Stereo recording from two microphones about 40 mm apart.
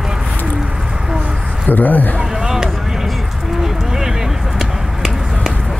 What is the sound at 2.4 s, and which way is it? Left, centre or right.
Vehicle, centre.